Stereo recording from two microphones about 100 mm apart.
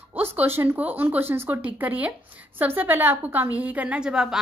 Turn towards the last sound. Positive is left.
turn(degrees=-5)  # may be behind; listen again after turning